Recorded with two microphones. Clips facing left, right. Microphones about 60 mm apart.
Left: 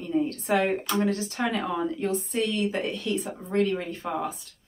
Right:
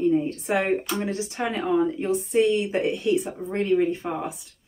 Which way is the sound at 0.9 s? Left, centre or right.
Centre.